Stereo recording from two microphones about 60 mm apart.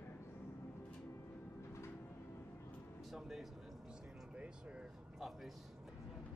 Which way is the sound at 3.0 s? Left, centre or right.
Centre.